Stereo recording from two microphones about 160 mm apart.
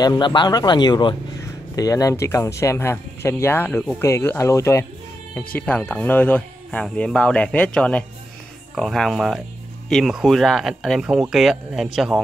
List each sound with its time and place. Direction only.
0.0 s speech: 25° left (ahead or behind); by 12.2 s centre (ahead or behind)